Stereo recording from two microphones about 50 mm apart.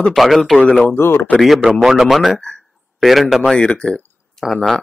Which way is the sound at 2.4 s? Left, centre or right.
Centre.